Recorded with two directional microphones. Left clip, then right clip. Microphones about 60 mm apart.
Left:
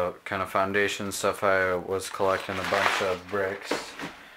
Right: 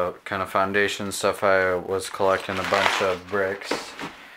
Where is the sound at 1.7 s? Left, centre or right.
Centre.